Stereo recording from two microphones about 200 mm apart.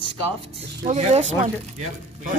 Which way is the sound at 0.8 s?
30° right (ahead or behind).